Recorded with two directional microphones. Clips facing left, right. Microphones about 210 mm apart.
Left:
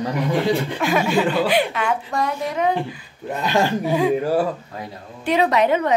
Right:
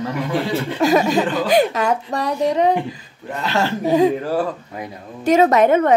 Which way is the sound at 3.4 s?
15° left (ahead or behind).